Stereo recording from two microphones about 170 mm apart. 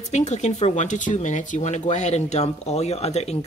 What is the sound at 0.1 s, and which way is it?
Speech, 40° left (ahead or behind).